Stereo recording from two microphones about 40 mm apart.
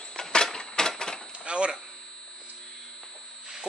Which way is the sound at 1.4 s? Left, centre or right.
Right.